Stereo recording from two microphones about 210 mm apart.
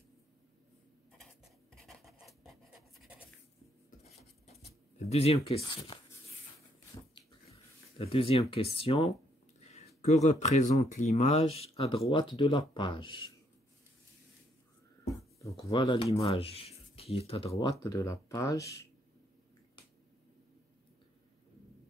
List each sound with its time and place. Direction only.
1.8 s scratch: centre (ahead or behind)
4.0 s writing: 30° left (ahead or behind)
8.0 s speech: 25° left (ahead or behind)
9.6 s a sound: 30° left (ahead or behind)
10.0 s speech: 35° left (ahead or behind)
15.5 s speech: 15° left (ahead or behind)
17.8 s speech: 15° left (ahead or behind)